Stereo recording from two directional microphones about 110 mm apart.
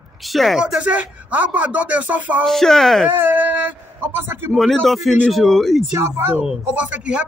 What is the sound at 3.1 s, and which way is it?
A man's voice, 15° right (ahead or behind).